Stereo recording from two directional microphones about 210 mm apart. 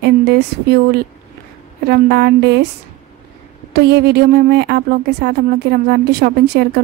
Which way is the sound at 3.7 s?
50° right (ahead or behind).